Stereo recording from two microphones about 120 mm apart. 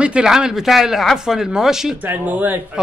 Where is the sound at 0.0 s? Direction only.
5° right (ahead or behind).